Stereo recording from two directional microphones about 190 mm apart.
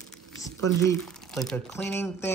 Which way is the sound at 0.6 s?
15° left (ahead or behind).